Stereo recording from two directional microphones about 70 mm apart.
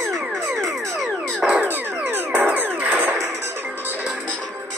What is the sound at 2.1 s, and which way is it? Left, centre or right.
Music, right.